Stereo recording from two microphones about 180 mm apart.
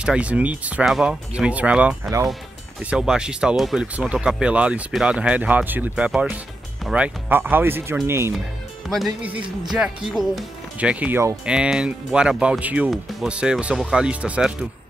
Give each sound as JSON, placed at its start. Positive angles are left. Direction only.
{"t": 0.0, "sound": "speech", "side_deg": -5}